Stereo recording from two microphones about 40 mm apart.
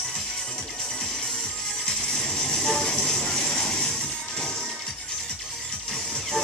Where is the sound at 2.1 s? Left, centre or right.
Centre.